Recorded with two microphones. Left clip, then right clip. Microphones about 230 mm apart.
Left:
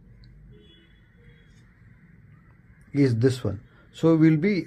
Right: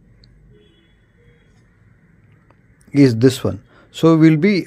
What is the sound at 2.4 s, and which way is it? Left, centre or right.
Speech, right.